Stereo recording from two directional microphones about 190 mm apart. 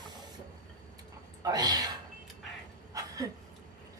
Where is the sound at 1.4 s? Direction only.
20° right (ahead or behind).